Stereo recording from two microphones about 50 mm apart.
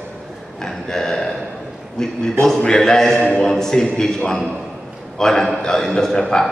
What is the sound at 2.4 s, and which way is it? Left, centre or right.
Speech, right.